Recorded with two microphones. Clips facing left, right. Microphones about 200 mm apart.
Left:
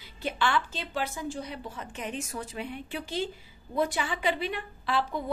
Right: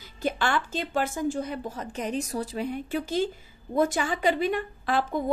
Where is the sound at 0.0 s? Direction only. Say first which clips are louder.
Right 2 dB; 45° right (ahead or behind).